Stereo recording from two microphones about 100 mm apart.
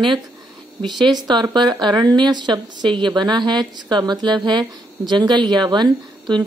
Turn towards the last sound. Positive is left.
turn(degrees=-45)  # may be behind; listen again after turning